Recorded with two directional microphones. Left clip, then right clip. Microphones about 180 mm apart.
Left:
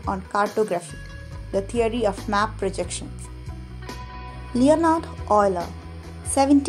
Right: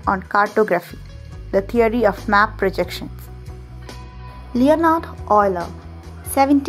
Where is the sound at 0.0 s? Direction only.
20° right (ahead or behind).